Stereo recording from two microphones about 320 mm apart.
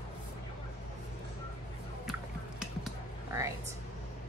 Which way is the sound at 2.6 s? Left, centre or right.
Centre.